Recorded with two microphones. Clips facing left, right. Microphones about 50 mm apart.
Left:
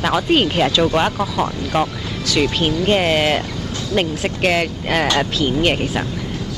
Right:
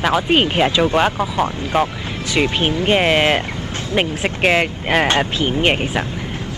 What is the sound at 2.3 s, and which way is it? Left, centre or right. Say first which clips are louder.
Speech: even; right.